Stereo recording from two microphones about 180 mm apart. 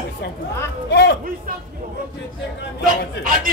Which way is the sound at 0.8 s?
70° left (ahead or behind).